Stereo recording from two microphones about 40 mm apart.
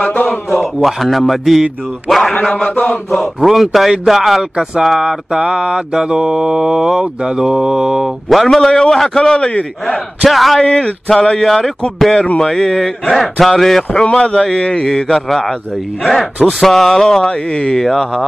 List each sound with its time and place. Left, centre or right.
0.0 s a sound: left
0.3 s a sound: centre
2.0 s speech: centre
2.8 s speech: left
3.3 s speech: centre
5.0 s mantra: centre
8.3 s a man's voice: centre
9.2 s speech: centre
10.2 s speech: centre
10.6 s a man's voice: centre
14.1 s speech: centre
17.3 s speech: left
17.8 s a man's voice: centre